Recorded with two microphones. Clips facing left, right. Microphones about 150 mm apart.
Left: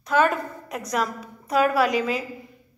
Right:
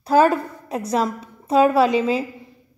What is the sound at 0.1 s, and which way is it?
A woman's voice, 35° right (ahead or behind).